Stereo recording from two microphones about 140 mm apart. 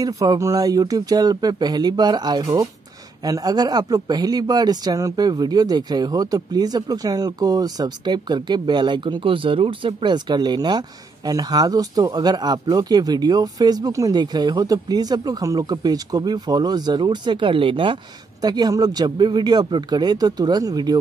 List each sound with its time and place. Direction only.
0.0 s speech: 25° right (ahead or behind)